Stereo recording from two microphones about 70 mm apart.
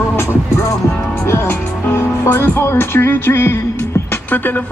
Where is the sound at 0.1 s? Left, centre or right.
Left.